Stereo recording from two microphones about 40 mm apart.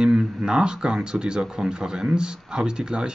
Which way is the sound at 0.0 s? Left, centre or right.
Centre.